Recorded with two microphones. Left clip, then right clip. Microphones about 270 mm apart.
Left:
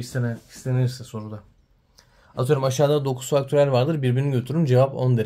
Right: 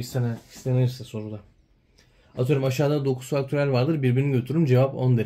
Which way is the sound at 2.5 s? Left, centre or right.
Centre.